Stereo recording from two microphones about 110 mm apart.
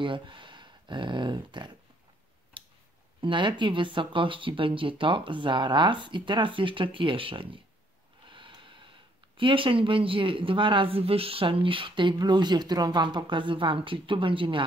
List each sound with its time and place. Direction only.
0.0 s speech: 50° right (ahead or behind)
2.6 s a sound: 50° right (ahead or behind)
3.2 s speech: 45° right (ahead or behind)
8.3 s snort: 50° right (ahead or behind)
9.4 s speech: 50° right (ahead or behind)